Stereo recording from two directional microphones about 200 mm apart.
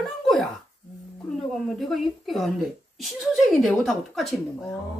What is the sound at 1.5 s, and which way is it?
Speech, centre (ahead or behind).